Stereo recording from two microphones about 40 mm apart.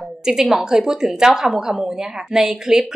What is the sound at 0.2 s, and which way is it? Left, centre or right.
A woman's voice, centre.